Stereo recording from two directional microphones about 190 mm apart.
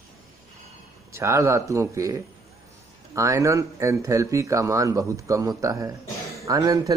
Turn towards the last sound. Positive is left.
turn(degrees=-20)  # may be behind; listen again after turning